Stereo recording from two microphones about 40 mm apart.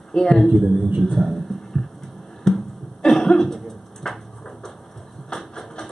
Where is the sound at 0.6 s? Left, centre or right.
Centre.